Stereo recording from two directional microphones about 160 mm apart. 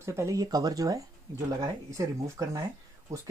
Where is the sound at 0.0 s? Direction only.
20° right (ahead or behind).